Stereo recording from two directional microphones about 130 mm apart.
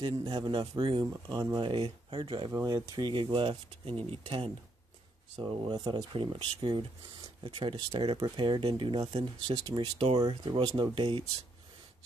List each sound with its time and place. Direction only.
0.0 s speech: 35° right (ahead or behind)